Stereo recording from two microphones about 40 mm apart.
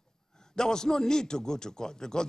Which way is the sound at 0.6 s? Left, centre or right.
Centre.